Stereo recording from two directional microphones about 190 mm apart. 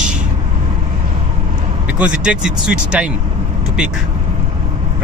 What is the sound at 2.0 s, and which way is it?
Speech, 5° right (ahead or behind).